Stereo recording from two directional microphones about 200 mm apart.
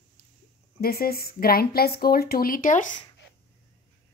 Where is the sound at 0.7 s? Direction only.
50° left (ahead or behind).